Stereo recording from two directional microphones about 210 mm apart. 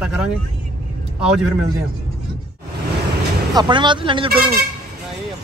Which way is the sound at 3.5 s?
20° right (ahead or behind).